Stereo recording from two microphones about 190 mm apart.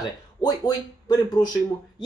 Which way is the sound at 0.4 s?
20° left (ahead or behind).